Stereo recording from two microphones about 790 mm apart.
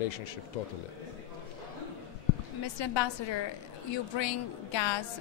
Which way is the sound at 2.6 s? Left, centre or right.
Left.